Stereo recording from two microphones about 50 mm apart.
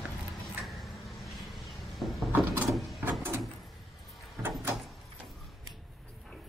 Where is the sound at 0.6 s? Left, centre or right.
Centre.